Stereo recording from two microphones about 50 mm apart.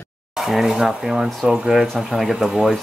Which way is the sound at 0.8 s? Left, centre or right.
Centre.